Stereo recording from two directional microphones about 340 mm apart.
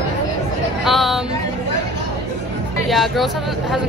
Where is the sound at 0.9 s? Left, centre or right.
Centre.